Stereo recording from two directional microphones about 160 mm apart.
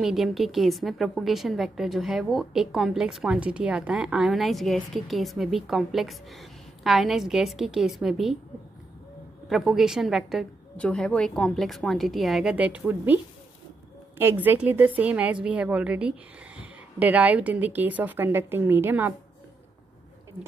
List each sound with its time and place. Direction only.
0.0 s a woman's voice: centre (ahead or behind)
9.5 s a woman's voice: centre (ahead or behind)